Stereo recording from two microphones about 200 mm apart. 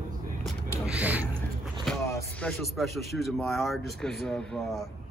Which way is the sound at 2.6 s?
Centre (ahead or behind).